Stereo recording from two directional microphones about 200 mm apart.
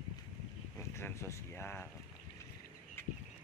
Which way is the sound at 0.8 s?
15° left (ahead or behind).